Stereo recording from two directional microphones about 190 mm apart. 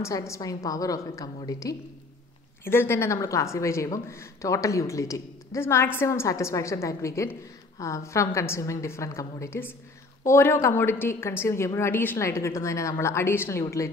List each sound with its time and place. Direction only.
0.0 s speech: 15° left (ahead or behind)